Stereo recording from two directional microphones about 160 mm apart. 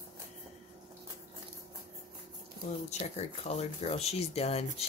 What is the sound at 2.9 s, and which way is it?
Speech, 45° left (ahead or behind).